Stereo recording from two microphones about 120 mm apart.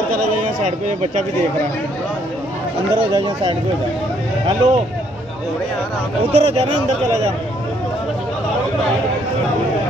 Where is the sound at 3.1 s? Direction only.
35° right (ahead or behind).